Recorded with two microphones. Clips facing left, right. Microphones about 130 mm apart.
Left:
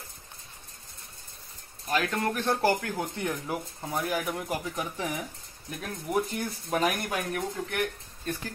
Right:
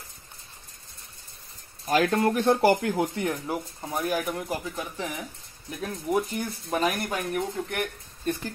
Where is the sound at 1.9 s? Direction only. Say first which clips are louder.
Right 6 dB; 35° right (ahead or behind).